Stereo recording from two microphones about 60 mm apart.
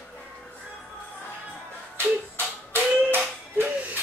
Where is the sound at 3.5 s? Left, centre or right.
Right.